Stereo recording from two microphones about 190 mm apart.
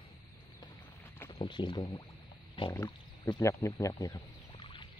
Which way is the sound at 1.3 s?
25° left (ahead or behind).